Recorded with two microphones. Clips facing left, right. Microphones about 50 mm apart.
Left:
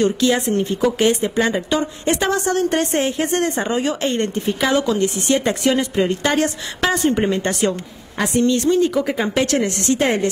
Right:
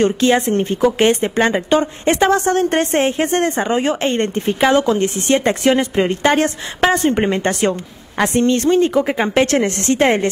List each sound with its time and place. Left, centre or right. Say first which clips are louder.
0.0 s speech: right 3 dB; right
8.2 s speech: right 2 dB; right